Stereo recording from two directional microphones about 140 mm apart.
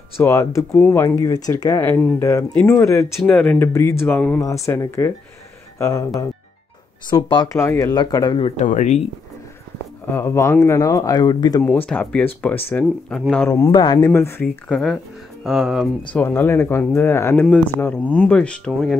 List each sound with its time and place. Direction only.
0.2 s speech: 25° left (ahead or behind)
2.0 s speech: 10° left (ahead or behind)
3.2 s speech: 5° left (ahead or behind); by 6.0 s 25° left (ahead or behind)
7.1 s speech: 35° left (ahead or behind)
7.5 s speech: 20° left (ahead or behind); by 8.6 s 40° left (ahead or behind)
8.6 s speech: 55° left (ahead or behind)
10.0 s speech: 15° left (ahead or behind)
11.6 s speech: 10° left (ahead or behind)
13.5 s speech: 30° left (ahead or behind)
13.9 s speech: 20° left (ahead or behind)
14.5 s speech: 5° left (ahead or behind)
16.1 s speech: 15° left (ahead or behind)